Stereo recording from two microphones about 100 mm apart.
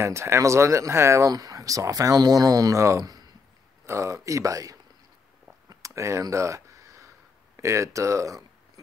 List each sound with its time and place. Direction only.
0.0 s speech: 25° right (ahead or behind)
5.7 s a sound: 35° right (ahead or behind)
7.5 s speech: 30° right (ahead or behind)